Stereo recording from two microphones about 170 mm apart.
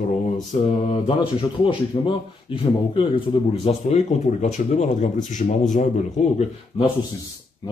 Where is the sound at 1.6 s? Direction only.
30° left (ahead or behind).